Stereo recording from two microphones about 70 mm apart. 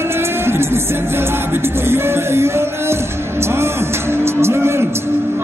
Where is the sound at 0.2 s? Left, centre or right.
Right.